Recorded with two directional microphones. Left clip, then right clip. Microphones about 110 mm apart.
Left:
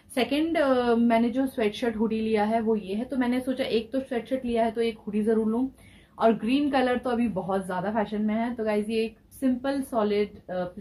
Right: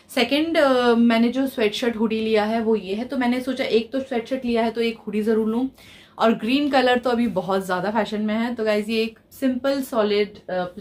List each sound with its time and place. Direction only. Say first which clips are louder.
0.1 s a woman's voice: right 5 dB; 5° right (ahead or behind)